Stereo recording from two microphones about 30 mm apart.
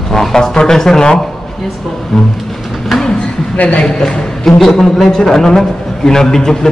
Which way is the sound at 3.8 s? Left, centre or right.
Centre.